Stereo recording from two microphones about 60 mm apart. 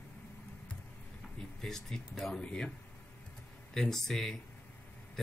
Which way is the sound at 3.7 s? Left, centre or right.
Centre.